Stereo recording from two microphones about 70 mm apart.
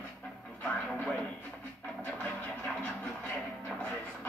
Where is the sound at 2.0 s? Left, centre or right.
Centre.